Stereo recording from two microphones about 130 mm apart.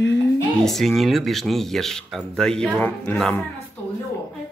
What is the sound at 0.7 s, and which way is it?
Speech, centre (ahead or behind).